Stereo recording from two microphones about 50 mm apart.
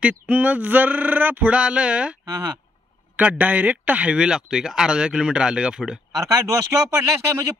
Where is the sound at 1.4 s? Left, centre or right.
Right.